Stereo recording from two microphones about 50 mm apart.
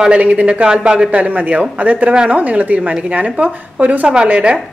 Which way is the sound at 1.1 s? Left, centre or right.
Right.